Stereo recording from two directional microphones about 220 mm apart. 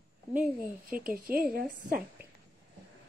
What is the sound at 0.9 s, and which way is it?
Speech, 40° right (ahead or behind).